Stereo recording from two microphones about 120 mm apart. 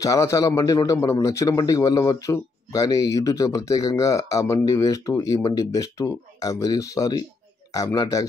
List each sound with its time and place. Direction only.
0.0 s a man's voice: 25° left (ahead or behind)